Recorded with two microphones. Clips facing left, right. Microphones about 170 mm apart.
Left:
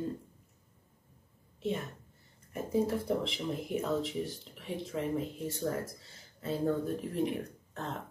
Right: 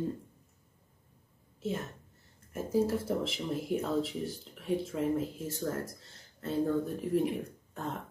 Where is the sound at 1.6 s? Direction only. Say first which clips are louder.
Left 1 dB; centre (ahead or behind).